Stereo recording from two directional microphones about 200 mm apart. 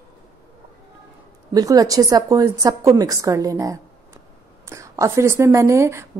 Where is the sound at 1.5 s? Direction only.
20° right (ahead or behind).